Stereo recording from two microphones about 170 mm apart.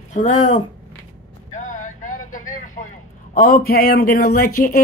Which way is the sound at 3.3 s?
60° left (ahead or behind).